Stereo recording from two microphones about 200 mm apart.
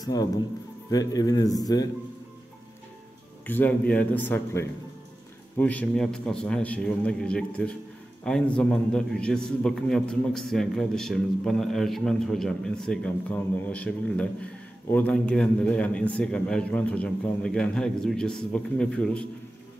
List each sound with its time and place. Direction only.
0.0 s a man's voice: 20° left (ahead or behind)
3.4 s a man's voice: 10° left (ahead or behind)